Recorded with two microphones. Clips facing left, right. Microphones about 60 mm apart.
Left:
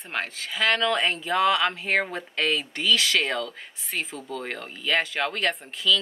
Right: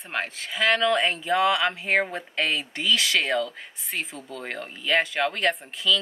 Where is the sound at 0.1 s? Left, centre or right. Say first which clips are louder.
Right 1 dB; centre.